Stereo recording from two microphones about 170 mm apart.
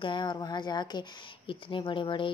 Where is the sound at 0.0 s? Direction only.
25° left (ahead or behind).